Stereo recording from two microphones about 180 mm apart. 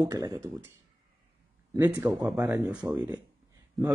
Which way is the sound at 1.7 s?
10° right (ahead or behind).